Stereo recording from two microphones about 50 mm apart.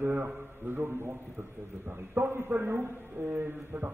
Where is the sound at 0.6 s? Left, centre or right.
Right.